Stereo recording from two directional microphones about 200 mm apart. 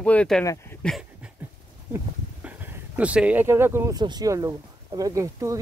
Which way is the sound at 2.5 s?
5° right (ahead or behind).